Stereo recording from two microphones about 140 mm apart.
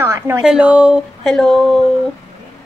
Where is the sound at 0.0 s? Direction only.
20° right (ahead or behind).